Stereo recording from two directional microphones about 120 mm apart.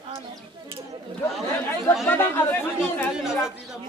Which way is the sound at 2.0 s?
20° left (ahead or behind).